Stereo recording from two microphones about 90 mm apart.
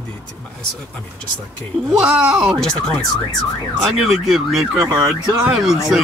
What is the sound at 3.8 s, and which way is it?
Speech, centre (ahead or behind).